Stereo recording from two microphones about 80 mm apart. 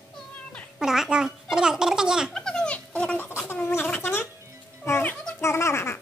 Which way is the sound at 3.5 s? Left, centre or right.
Left.